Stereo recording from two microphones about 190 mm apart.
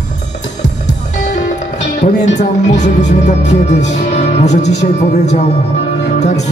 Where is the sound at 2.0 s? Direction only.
40° left (ahead or behind).